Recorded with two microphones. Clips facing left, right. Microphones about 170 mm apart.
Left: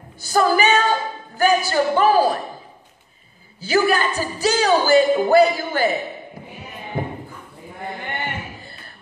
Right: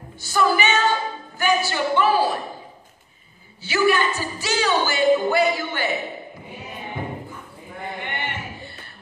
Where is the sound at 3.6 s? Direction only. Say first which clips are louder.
Left 1 dB; 40° left (ahead or behind).